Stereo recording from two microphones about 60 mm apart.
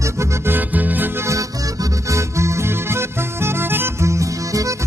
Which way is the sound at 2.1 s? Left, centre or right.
Right.